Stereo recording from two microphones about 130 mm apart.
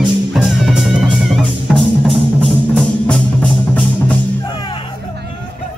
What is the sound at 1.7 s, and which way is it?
Music, 10° left (ahead or behind).